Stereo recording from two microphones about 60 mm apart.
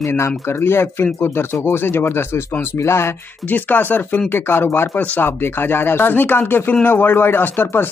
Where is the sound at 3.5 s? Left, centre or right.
Left.